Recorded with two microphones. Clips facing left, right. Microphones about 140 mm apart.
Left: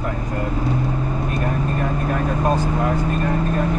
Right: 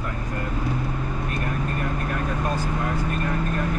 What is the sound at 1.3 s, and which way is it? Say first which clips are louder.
Vehicle: left 5 dB; 30° left (ahead or behind).